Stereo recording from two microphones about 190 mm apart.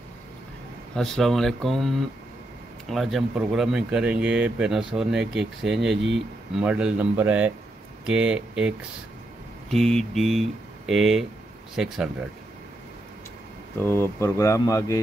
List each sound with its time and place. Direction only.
0.9 s speech: centre (ahead or behind)
13.7 s speech: 15° left (ahead or behind)